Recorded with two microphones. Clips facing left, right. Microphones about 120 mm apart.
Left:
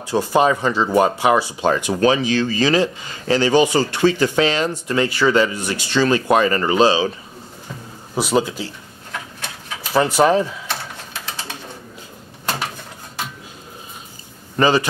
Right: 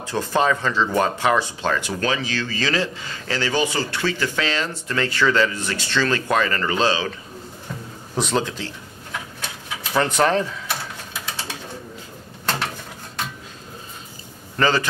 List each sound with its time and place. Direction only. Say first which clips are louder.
0.0 s speech: left 4 dB; 10° left (ahead or behind)
8.2 s speech: left 4 dB; 10° left (ahead or behind)
9.9 s speech: left 4 dB; 10° left (ahead or behind)
14.6 s speech: left 4 dB; 15° left (ahead or behind)